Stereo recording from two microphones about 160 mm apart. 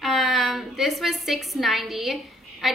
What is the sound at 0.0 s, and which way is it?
A woman's voice, centre (ahead or behind).